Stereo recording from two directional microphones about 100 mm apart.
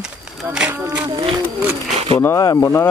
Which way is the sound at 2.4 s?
40° left (ahead or behind).